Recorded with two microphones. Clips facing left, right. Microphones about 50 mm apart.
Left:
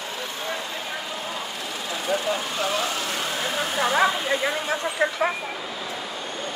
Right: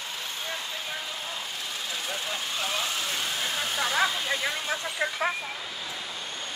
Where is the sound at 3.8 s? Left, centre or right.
Left.